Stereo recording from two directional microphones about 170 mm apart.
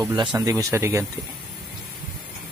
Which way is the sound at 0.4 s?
20° right (ahead or behind).